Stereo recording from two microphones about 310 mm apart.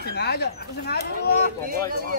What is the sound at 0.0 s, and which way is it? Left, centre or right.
Speech, left.